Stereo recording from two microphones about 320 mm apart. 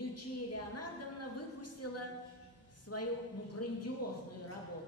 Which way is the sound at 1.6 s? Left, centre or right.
Left.